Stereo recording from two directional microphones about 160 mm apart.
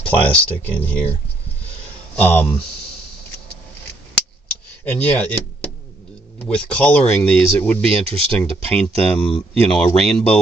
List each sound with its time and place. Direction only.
0.0 s speech: 10° left (ahead or behind)
2.1 s speech: 10° left (ahead or behind)
5.0 s speech: 10° left (ahead or behind)
7.9 s speech: 35° right (ahead or behind)
8.4 s speech: 5° left (ahead or behind)